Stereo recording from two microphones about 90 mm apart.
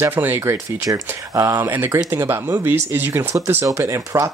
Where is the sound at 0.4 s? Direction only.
35° right (ahead or behind).